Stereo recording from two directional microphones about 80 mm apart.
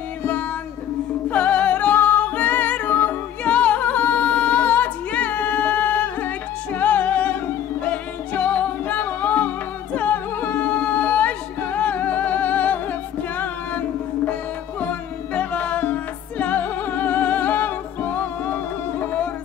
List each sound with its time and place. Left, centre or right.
1.3 s music: centre
15.3 s music: centre